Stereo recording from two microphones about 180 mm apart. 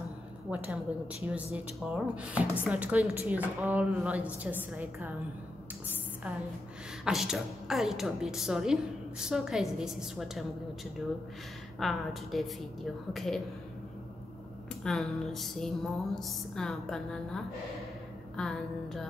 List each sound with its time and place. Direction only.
0.5 s a woman's voice: 10° right (ahead or behind)
7.1 s speech: centre (ahead or behind)
11.8 s speech: centre (ahead or behind)
14.8 s speech: centre (ahead or behind)